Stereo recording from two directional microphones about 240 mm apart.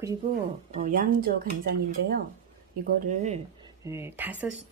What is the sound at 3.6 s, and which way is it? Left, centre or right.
Speech, centre.